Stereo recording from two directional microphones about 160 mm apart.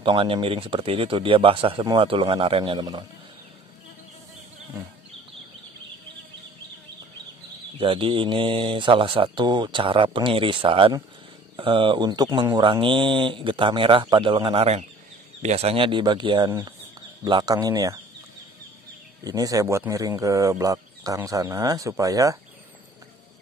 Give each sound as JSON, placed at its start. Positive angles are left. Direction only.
{"t": 0.0, "sound": "speech", "side_deg": -30}
{"t": 7.8, "sound": "speech", "side_deg": -35}
{"t": 19.2, "sound": "speech", "side_deg": -20}